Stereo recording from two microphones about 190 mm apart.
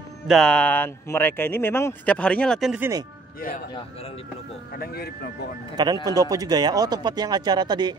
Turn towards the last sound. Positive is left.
turn(degrees=-20)  # may be behind; listen again after turning